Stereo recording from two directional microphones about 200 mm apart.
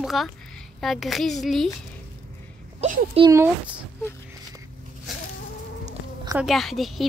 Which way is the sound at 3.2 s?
15° right (ahead or behind).